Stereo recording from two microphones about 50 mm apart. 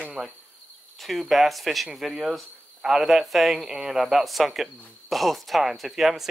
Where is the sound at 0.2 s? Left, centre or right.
Centre.